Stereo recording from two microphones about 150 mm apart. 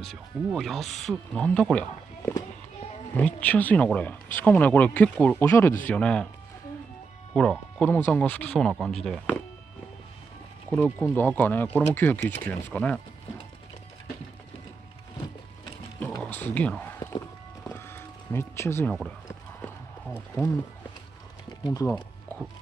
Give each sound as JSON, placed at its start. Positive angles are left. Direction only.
{"t": 0.0, "sound": "speech", "side_deg": 0}
{"t": 7.3, "sound": "speech", "side_deg": 5}
{"t": 10.7, "sound": "speech", "side_deg": 10}
{"t": 16.2, "sound": "a sound", "side_deg": 10}
{"t": 17.6, "sound": "vehicle", "side_deg": 15}
{"t": 21.6, "sound": "speech", "side_deg": 20}